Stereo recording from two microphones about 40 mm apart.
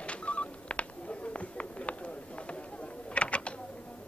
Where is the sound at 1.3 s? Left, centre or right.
Left.